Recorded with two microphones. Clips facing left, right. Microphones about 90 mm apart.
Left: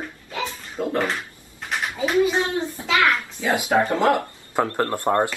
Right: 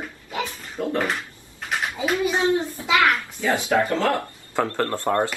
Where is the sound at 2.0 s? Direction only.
20° left (ahead or behind).